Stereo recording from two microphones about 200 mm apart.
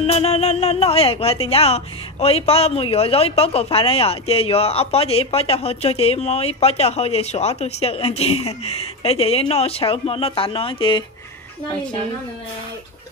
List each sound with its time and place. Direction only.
0.0 s speech: 30° left (ahead or behind)